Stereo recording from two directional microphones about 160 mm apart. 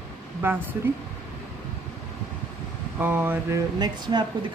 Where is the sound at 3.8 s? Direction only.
25° right (ahead or behind).